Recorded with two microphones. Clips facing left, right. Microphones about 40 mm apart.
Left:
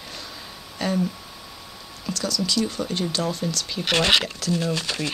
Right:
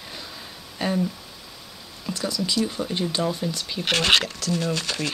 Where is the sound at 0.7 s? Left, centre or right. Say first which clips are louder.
Even; centre.